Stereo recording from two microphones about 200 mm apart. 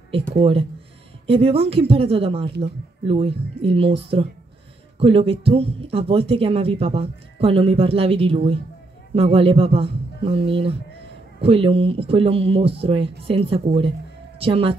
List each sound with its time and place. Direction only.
0.3 s speech: 30° right (ahead or behind)